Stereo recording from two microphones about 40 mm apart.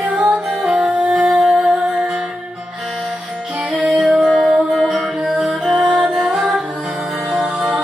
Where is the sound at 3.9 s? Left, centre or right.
Centre.